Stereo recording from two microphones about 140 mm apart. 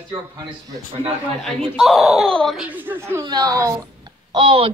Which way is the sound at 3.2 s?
30° right (ahead or behind).